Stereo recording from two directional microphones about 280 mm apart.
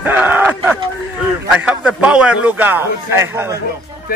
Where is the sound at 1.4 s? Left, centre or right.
Centre.